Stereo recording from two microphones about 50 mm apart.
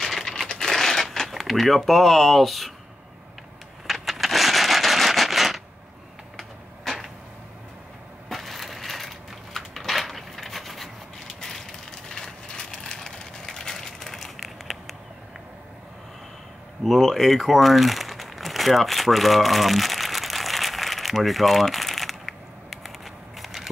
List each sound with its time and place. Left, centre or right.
0.0 s crumpling: centre
0.7 s a sound: centre
3.8 s a sound: centre
6.3 s printer: centre
8.3 s crushing: centre
12.1 s ratchet: centre
16.8 s crumpling: centre